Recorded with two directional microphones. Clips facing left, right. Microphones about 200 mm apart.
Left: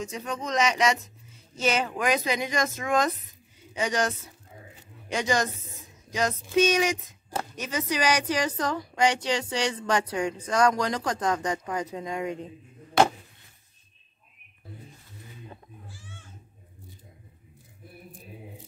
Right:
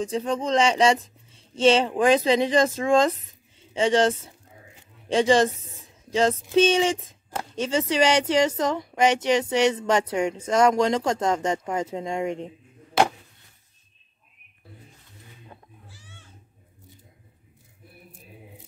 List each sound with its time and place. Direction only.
0.0 s a woman's voice: 30° right (ahead or behind)
6.0 s a sound: 30° right (ahead or behind)
6.5 s a woman's voice: 30° right (ahead or behind)
15.9 s cat: 50° left (ahead or behind)